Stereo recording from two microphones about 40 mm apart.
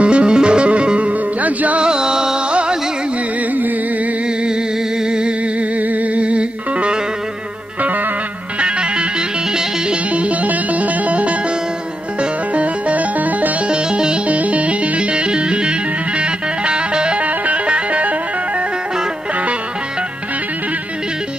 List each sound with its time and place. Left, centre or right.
0.0 s music: right
1.8 s music: right
5.0 s music: right
5.6 s music: right
8.5 s music: right
10.1 s music: right
13.7 s music: right